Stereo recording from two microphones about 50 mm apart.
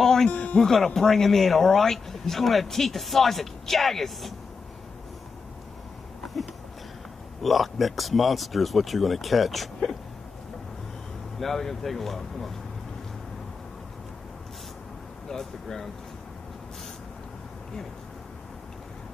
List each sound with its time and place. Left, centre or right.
0.0 s music: centre
0.3 s speech: left
0.6 s speech: centre
7.4 s speech: centre
11.3 s speech: centre
15.2 s speech: centre